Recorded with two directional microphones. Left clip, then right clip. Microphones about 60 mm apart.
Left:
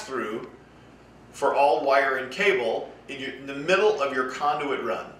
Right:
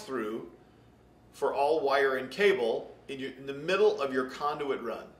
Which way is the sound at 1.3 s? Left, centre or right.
Left.